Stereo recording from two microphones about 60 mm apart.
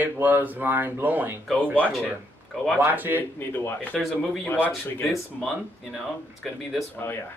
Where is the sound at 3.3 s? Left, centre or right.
Left.